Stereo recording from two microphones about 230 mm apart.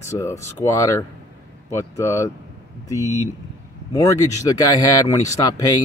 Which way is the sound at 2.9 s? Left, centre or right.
Centre.